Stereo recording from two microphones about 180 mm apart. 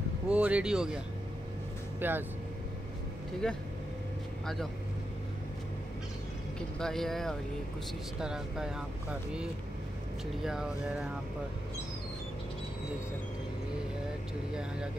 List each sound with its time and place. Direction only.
0.3 s speech: 5° right (ahead or behind)
3.4 s speech: 5° left (ahead or behind)
6.8 s speech: centre (ahead or behind)
10.4 s speech: 5° right (ahead or behind)
14.5 s speech: 5° right (ahead or behind)